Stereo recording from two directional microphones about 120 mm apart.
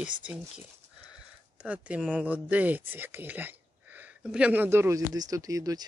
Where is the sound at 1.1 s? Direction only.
10° right (ahead or behind); by 5.8 s 30° right (ahead or behind).